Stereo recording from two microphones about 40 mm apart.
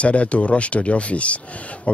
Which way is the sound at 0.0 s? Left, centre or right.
Left.